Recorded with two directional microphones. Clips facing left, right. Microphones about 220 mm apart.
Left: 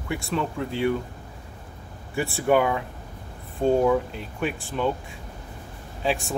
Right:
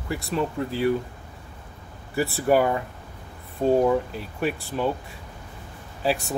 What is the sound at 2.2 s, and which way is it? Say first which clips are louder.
Speech: right 1 dB; centre (ahead or behind).